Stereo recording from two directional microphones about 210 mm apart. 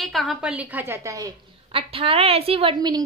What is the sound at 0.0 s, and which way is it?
A woman's voice, centre (ahead or behind).